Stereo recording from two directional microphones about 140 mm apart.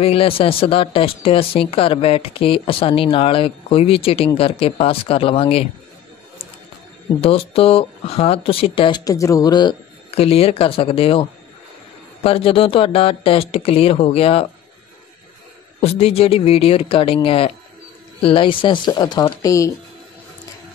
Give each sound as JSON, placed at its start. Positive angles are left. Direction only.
{"t": 0.0, "sound": "speech", "side_deg": 40}
{"t": 7.2, "sound": "speech", "side_deg": 45}
{"t": 9.0, "sound": "speech", "side_deg": 25}
{"t": 10.1, "sound": "speech", "side_deg": 45}
{"t": 15.8, "sound": "speech", "side_deg": 45}